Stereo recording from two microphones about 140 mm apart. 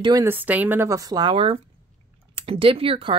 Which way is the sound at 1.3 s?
40° right (ahead or behind).